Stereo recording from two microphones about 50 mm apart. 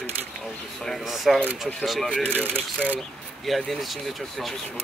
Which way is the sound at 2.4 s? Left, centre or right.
Left.